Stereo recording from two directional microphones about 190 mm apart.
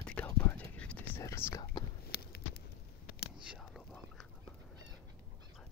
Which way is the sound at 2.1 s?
55° left (ahead or behind).